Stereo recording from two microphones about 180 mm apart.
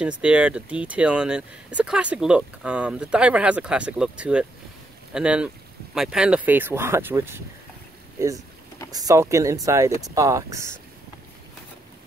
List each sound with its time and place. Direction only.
0.0 s speech: 5° right (ahead or behind)
8.9 s speech: 20° right (ahead or behind)